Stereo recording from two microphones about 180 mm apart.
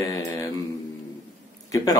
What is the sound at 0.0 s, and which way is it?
Mantra, 15° left (ahead or behind).